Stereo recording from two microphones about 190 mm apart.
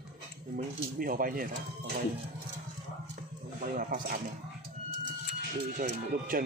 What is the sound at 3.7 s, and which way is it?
Speech, 50° right (ahead or behind).